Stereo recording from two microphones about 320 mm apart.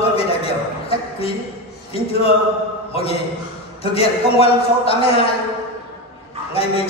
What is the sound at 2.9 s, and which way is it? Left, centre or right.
A man's voice, centre.